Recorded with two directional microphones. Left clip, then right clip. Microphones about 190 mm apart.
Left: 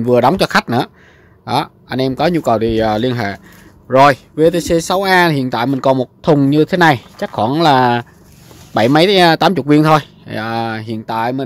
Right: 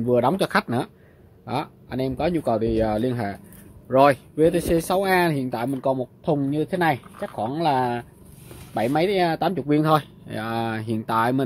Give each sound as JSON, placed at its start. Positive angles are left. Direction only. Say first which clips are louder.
{"t": 0.0, "sound": "speech", "louder": "left 9 dB", "side_deg": 30}